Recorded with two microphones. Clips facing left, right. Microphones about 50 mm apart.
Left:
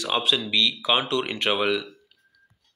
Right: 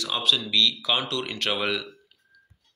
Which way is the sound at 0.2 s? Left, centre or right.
Left.